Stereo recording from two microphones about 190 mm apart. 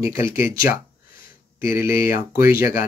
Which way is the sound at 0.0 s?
15° right (ahead or behind).